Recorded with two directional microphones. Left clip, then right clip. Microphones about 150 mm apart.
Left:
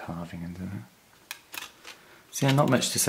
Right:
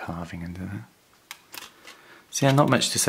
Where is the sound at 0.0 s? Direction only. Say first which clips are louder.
Right 4 dB; 40° right (ahead or behind).